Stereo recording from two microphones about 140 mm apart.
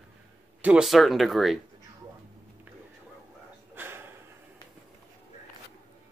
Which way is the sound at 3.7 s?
15° right (ahead or behind).